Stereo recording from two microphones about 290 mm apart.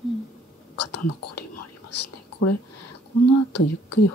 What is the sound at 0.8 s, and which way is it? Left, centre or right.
Whispering, left.